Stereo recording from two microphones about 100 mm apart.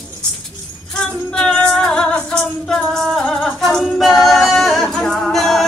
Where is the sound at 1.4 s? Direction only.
5° left (ahead or behind).